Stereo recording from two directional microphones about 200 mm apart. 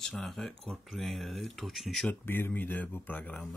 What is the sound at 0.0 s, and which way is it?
Speech, centre (ahead or behind).